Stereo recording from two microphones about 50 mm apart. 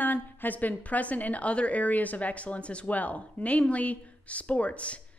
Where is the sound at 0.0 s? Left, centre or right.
Left.